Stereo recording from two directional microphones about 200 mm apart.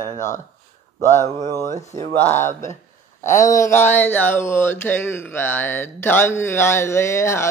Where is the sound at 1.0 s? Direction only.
15° left (ahead or behind).